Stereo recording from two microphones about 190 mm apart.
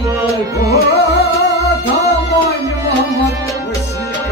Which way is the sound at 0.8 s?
55° left (ahead or behind).